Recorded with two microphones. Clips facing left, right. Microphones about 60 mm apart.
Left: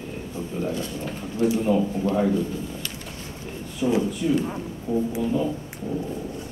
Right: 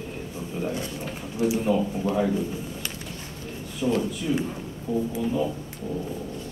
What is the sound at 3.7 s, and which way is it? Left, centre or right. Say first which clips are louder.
Speech: left 2 dB; centre.